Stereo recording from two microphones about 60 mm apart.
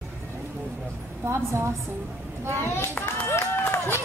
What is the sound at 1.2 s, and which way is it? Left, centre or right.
Speech, right.